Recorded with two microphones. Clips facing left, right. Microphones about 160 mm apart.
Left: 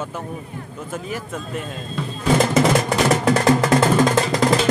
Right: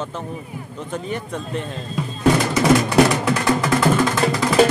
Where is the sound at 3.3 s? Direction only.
35° left (ahead or behind).